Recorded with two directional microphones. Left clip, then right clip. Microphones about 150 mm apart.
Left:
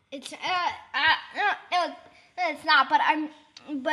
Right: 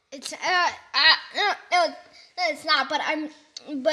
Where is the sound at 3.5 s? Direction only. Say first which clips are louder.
Right 7 dB; 65° right (ahead or behind).